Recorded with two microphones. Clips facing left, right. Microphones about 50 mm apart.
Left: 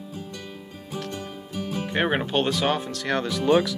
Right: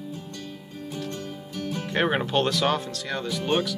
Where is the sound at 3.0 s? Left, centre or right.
Left.